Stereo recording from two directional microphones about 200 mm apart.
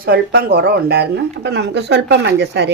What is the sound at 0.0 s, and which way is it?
Speech, 50° right (ahead or behind).